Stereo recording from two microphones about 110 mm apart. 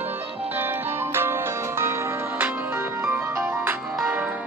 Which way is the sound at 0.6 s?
20° right (ahead or behind).